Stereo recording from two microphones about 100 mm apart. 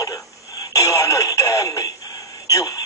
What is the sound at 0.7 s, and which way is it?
Music, 35° left (ahead or behind).